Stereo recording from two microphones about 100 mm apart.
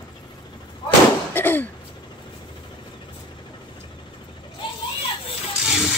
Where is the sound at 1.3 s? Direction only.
20° left (ahead or behind).